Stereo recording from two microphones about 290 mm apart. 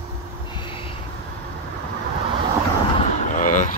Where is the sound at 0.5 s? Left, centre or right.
Centre.